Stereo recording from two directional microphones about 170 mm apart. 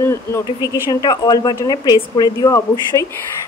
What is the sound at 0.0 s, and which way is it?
Speech, 15° left (ahead or behind).